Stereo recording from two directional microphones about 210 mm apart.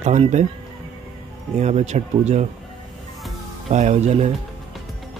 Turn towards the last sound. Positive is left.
turn(degrees=-30)  # may be behind; listen again after turning